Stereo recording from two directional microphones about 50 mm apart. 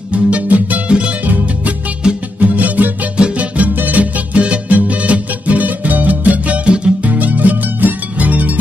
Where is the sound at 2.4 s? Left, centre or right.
Right.